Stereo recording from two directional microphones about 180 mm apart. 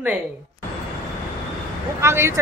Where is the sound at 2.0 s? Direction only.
15° right (ahead or behind).